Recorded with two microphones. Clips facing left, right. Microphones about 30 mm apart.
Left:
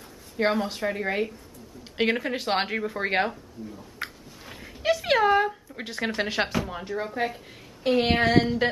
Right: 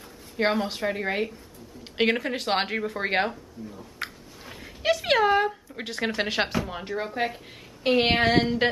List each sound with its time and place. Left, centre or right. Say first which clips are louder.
0.4 s speech: even; centre
6.7 s speech: even; centre
7.8 s a sound: right 1 dB; right